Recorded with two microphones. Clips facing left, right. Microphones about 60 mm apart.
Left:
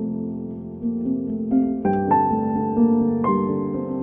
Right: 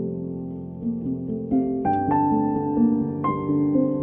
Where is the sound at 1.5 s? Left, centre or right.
Left.